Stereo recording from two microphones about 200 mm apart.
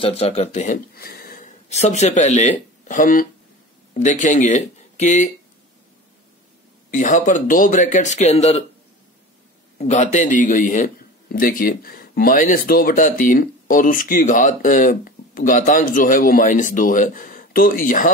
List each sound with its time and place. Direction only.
0.0 s speech: 30° left (ahead or behind)
0.9 s speech: 50° left (ahead or behind)
6.9 s speech: 40° left (ahead or behind)
9.8 s speech: 35° left (ahead or behind)